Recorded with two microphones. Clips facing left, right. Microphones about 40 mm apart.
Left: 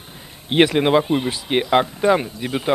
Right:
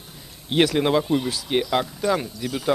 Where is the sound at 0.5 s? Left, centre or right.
Left.